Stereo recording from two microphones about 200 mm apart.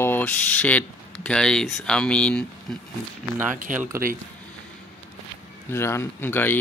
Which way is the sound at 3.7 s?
40° right (ahead or behind).